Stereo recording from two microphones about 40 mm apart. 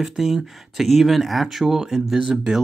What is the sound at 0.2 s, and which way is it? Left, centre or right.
Speech, centre.